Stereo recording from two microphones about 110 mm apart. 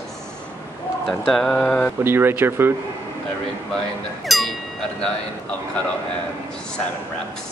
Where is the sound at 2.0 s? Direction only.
20° right (ahead or behind).